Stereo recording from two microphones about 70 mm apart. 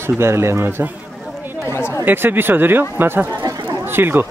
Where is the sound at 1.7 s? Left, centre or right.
Left.